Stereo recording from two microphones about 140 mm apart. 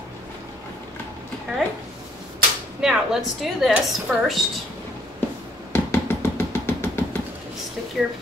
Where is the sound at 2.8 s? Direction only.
5° right (ahead or behind).